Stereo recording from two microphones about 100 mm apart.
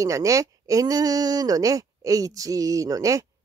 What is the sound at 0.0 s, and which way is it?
Speech, 35° right (ahead or behind).